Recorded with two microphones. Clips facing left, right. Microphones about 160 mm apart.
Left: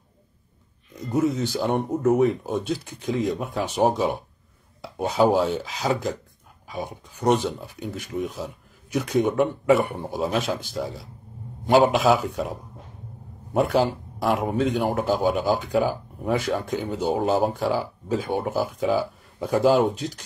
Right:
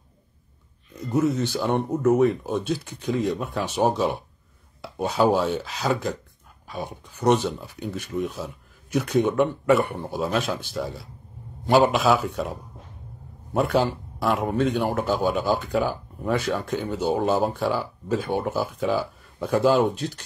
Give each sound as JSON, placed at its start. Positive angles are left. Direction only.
{"t": 1.0, "sound": "a man's voice", "side_deg": 10}
{"t": 3.3, "sound": "a man's voice", "side_deg": 10}